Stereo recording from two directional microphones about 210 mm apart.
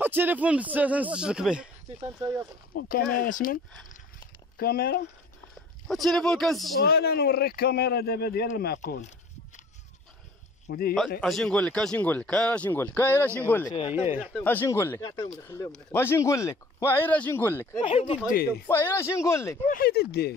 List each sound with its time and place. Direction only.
0.0 s speech: 10° right (ahead or behind)
2.7 s speech: 45° left (ahead or behind)
5.9 s speech: centre (ahead or behind)
6.8 s speech: 50° left (ahead or behind)
10.7 s speech: 45° left (ahead or behind)
11.1 s speech: centre (ahead or behind)
17.7 s speech: 25° left (ahead or behind)
18.7 s speech: 10° left (ahead or behind)
19.7 s speech: 50° left (ahead or behind)